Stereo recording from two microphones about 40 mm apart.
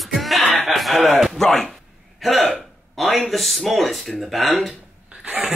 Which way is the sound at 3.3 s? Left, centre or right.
Centre.